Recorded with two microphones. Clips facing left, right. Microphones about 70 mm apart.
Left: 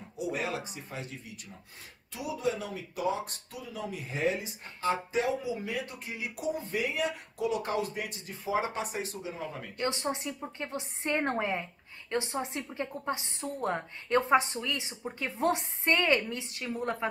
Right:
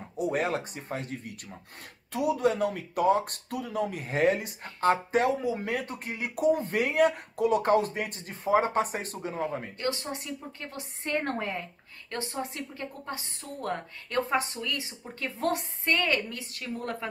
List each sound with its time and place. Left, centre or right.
0.2 s speech: right
10.1 s a woman's voice: left